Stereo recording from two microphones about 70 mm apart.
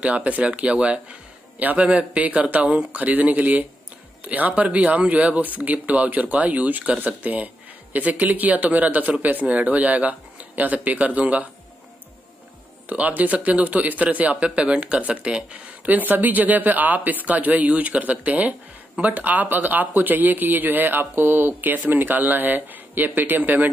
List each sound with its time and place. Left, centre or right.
0.0 s speech: right
12.9 s speech: right